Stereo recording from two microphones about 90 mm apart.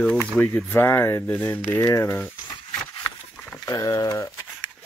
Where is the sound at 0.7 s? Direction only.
25° left (ahead or behind).